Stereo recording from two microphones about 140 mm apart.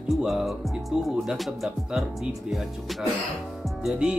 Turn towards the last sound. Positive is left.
turn(degrees=-5)  # may be behind; listen again after turning